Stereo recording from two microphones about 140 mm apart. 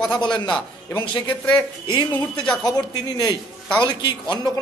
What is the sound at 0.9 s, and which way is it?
A man's voice, 30° left (ahead or behind).